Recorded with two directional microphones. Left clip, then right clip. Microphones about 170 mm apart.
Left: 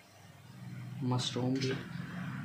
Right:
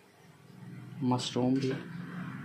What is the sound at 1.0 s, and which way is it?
Speech, 30° right (ahead or behind).